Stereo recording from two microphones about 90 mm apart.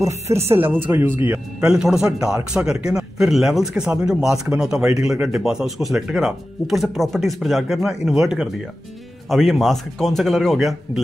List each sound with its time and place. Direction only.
0.0 s speech: 30° right (ahead or behind)
1.6 s speech: 5° right (ahead or behind)